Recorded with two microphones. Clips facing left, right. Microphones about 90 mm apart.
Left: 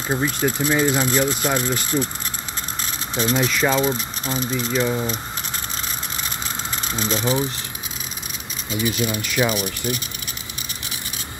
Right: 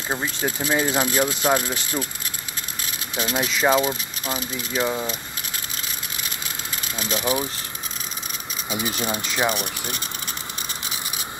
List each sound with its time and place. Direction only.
0.1 s speech: 5° right (ahead or behind)
1.9 s speech: 20° right (ahead or behind)
3.2 s speech: 10° right (ahead or behind)
3.4 s speech: 20° right (ahead or behind)
3.8 s speech: 5° right (ahead or behind)
7.0 s speech: 5° right (ahead or behind)
8.8 s speech: 35° right (ahead or behind)